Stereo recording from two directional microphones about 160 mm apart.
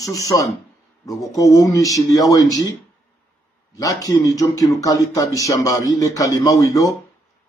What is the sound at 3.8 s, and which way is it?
Speech, 20° left (ahead or behind).